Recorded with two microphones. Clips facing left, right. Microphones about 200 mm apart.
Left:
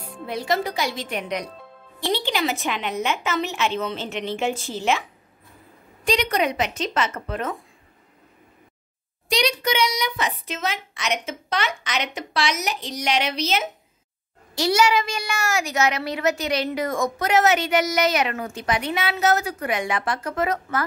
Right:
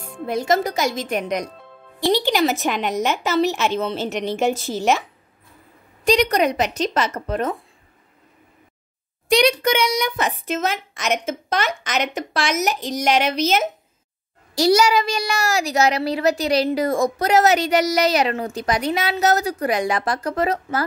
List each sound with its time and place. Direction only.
0.3 s a child's voice: 45° right (ahead or behind)
6.0 s a woman's voice: 40° right (ahead or behind)
9.3 s a child's voice: 55° right (ahead or behind); by 20.8 s 30° right (ahead or behind)